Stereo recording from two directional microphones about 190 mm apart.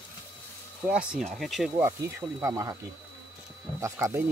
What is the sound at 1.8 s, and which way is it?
Speech, 15° right (ahead or behind).